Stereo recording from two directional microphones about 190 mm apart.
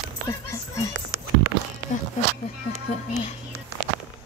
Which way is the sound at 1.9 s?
40° left (ahead or behind).